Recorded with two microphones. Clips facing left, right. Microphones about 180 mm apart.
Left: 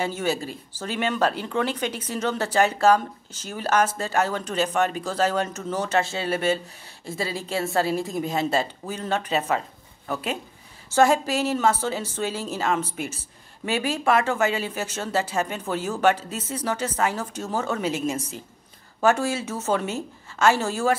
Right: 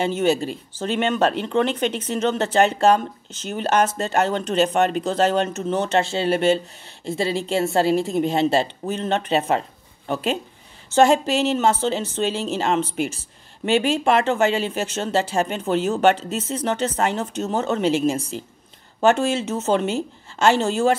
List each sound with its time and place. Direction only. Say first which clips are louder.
0.0 s a woman's voice: right 6 dB; 25° right (ahead or behind)